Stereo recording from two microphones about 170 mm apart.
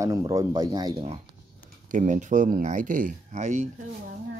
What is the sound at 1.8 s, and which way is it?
Speech, 50° right (ahead or behind).